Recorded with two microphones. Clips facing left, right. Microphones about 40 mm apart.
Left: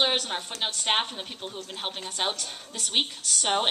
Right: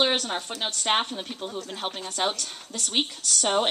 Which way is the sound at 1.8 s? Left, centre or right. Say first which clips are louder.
Right 2 dB; centre.